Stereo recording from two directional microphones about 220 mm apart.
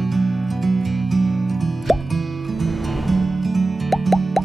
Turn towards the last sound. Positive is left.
turn(degrees=0)  # may be behind; listen again after turning